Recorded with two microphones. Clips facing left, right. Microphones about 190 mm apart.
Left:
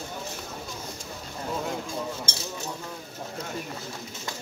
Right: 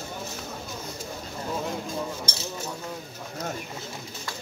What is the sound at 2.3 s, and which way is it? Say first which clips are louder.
Speech: right 1 dB; 25° left (ahead or behind).